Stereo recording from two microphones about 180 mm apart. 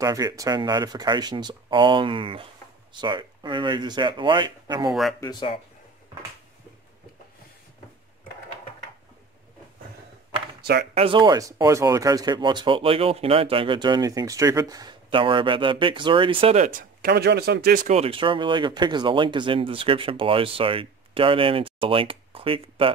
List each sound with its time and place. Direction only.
0.0 s speech: 20° right (ahead or behind)
5.2 s speech: 25° left (ahead or behind)
11.0 s speech: 30° right (ahead or behind); by 17.1 s 45° right (ahead or behind)
17.1 s speech: 65° right (ahead or behind); by 22.9 s 30° right (ahead or behind)